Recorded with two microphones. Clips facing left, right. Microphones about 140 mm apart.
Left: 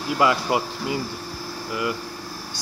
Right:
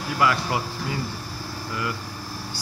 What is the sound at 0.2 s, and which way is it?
Speech, 20° left (ahead or behind).